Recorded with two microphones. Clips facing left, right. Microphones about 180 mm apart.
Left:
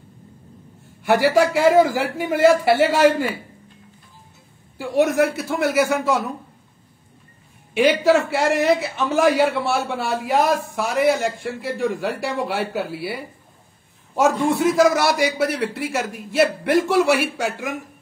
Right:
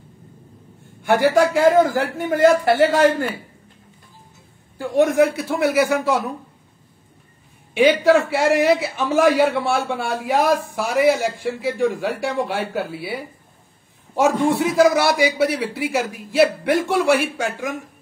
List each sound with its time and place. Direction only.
1.0 s a man's voice: 5° left (ahead or behind)
4.7 s a man's voice: 5° left (ahead or behind)
8.0 s a man's voice: centre (ahead or behind)